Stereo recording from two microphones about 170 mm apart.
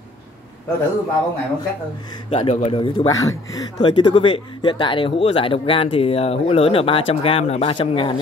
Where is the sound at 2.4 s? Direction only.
35° left (ahead or behind).